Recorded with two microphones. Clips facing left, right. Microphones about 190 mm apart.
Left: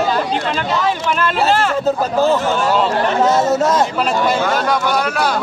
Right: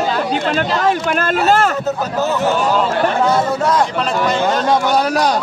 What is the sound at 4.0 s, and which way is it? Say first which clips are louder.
Speech: left 1 dB; 5° left (ahead or behind).